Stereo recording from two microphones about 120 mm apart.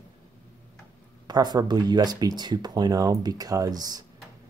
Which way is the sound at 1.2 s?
35° right (ahead or behind).